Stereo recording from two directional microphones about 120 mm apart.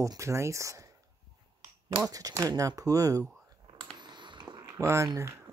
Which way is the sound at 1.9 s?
30° right (ahead or behind).